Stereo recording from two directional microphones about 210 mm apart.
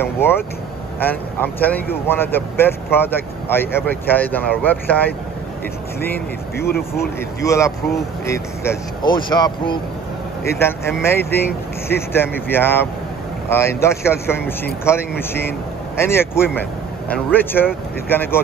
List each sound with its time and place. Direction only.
0.0 s speech: 10° left (ahead or behind)
7.4 s speech: 15° left (ahead or behind)
10.4 s speech: 10° left (ahead or behind)